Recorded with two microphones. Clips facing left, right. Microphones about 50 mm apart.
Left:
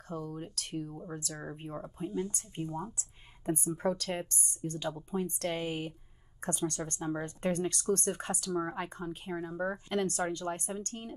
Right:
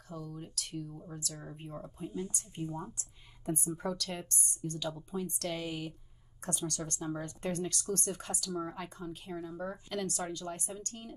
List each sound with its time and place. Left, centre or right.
0.1 s speech: left